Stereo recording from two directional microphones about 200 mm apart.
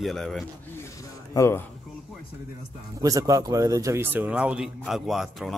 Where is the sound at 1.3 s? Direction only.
15° left (ahead or behind).